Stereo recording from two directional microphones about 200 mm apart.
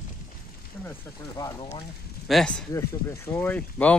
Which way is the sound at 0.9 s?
20° left (ahead or behind).